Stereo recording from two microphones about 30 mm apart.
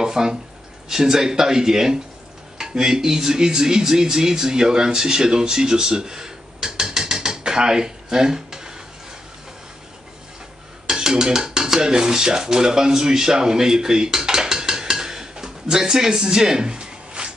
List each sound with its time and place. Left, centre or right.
0.0 s a sound: centre
0.8 s speech: centre
10.9 s dishes: centre